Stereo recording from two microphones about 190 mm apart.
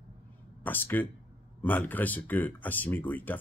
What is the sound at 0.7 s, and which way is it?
A man's voice, 10° left (ahead or behind).